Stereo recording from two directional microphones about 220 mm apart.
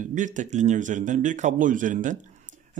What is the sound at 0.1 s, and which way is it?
A man's voice, 35° right (ahead or behind).